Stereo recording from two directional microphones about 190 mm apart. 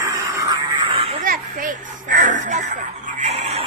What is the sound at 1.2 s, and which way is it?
Children playing, 45° right (ahead or behind).